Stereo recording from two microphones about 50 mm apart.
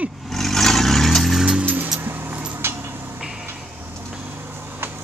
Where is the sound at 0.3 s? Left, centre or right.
Centre.